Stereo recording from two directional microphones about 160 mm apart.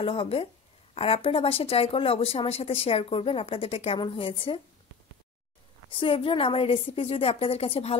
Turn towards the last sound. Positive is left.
turn(degrees=40)  # may be behind; listen again after turning